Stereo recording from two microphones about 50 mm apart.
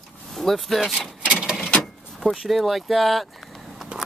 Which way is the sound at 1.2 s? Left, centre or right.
Centre.